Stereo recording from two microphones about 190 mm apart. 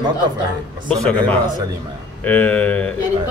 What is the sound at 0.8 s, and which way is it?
Speech, 5° left (ahead or behind).